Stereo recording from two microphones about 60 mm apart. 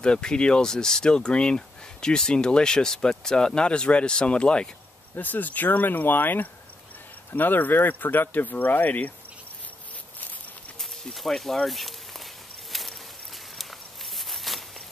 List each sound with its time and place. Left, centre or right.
0.0 s speech: centre
5.1 s speech: left
11.1 s speech: centre
14.1 s a sound: centre